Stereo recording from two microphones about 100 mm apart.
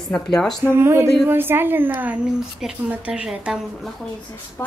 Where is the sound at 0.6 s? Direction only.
25° right (ahead or behind); by 3.6 s 10° right (ahead or behind).